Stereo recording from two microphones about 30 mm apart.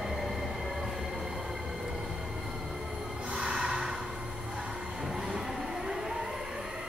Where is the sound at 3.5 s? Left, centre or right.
Centre.